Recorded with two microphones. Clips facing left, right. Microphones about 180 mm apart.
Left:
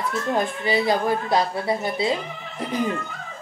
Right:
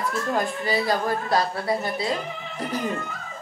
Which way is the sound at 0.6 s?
20° left (ahead or behind).